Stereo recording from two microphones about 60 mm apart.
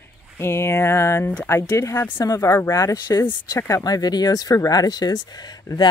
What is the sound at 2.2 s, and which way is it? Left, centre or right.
Speech, left.